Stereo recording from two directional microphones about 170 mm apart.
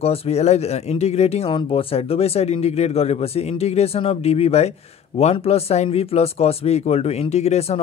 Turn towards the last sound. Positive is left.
turn(degrees=40)  # may be behind; listen again after turning